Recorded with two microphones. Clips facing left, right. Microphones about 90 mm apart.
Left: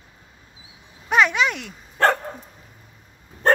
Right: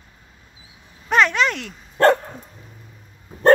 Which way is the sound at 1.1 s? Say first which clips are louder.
Right 1 dB; 5° left (ahead or behind).